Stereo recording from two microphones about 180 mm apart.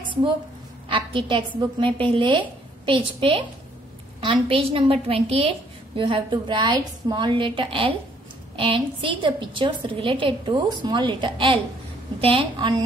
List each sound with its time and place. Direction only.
0.8 s a woman's voice: 30° right (ahead or behind)